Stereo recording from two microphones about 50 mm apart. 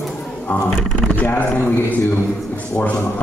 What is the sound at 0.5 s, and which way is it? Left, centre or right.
Speech, left.